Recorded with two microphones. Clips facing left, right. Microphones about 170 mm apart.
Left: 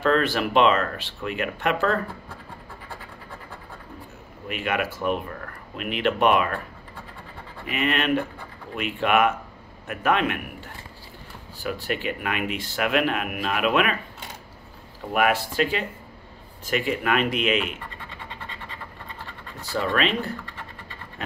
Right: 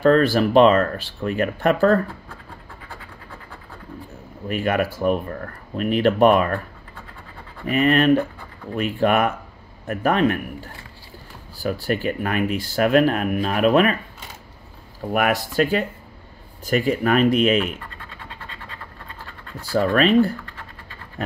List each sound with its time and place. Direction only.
0.0 s speech: 40° right (ahead or behind)
4.5 s speech: 40° right (ahead or behind)
7.6 s speech: 40° right (ahead or behind)
15.1 s speech: 45° right (ahead or behind)
19.7 s speech: 40° right (ahead or behind)